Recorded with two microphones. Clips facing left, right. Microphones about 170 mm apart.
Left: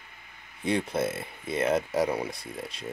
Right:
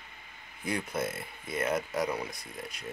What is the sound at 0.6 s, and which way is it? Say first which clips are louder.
Speech: left 6 dB; 25° left (ahead or behind).